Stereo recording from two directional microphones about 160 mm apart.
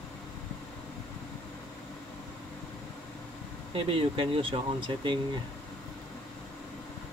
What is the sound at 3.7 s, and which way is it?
Speech, 35° right (ahead or behind).